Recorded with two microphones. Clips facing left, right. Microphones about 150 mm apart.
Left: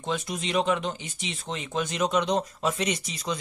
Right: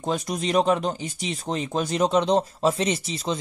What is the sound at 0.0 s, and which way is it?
Speech, 40° right (ahead or behind).